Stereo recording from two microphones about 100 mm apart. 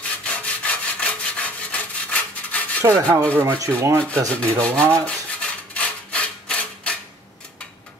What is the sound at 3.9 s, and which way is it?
Rub, 10° left (ahead or behind).